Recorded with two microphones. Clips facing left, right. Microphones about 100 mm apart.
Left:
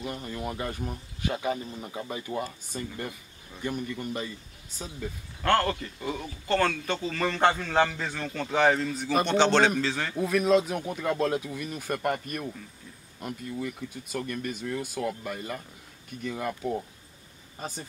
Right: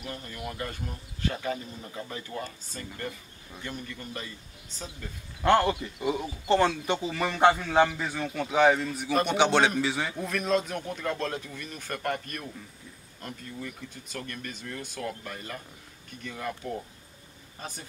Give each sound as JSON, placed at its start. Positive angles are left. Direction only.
{"t": 0.0, "sound": "speech", "side_deg": 20}
{"t": 5.4, "sound": "speech", "side_deg": -15}
{"t": 10.1, "sound": "speech", "side_deg": 5}